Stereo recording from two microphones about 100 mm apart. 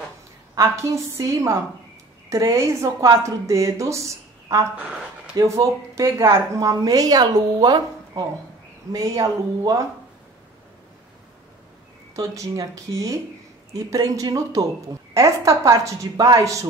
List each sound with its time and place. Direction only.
0.6 s a woman's voice: 30° right (ahead or behind)
12.2 s a woman's voice: 35° right (ahead or behind)